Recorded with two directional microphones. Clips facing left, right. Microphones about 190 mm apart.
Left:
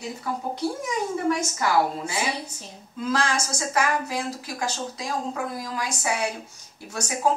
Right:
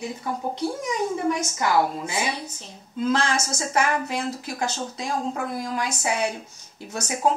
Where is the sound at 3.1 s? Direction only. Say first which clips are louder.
Right 1 dB; 25° right (ahead or behind).